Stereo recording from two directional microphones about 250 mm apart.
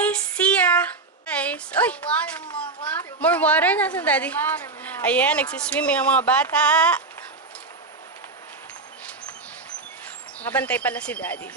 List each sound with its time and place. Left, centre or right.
0.0 s child singing: centre
1.3 s a child's voice: centre
10.4 s speech: centre